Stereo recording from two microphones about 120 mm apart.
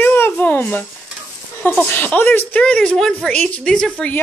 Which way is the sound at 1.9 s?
15° left (ahead or behind).